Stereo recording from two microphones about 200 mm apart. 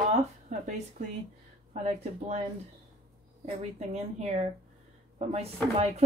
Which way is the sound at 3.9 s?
30° right (ahead or behind).